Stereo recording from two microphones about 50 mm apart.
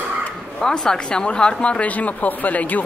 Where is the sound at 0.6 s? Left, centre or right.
Centre.